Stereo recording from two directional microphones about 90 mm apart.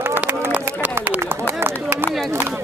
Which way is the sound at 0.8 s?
15° right (ahead or behind).